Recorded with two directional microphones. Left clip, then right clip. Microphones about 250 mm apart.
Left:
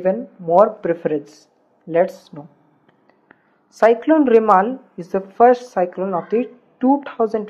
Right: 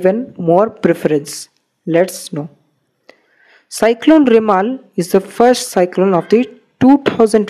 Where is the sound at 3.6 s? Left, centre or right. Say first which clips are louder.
Right 3 dB; right.